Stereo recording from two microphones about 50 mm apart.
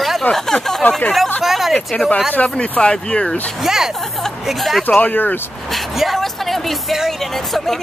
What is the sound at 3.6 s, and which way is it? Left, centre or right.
Speech, centre.